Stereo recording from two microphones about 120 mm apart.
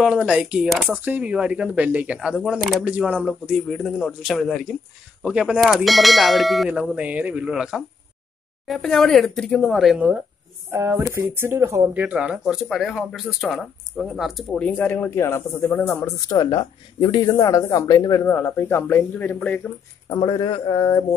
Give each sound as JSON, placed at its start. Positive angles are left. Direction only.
{"t": 0.0, "sound": "speech", "side_deg": -5}
{"t": 10.7, "sound": "speech", "side_deg": -20}
{"t": 11.9, "sound": "speech", "side_deg": -10}
{"t": 14.6, "sound": "speech", "side_deg": 15}
{"t": 16.3, "sound": "speech", "side_deg": 35}
{"t": 18.2, "sound": "speech", "side_deg": 20}
{"t": 20.1, "sound": "a man's voice", "side_deg": 40}